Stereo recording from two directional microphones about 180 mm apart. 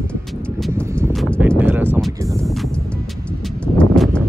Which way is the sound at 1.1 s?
5° left (ahead or behind).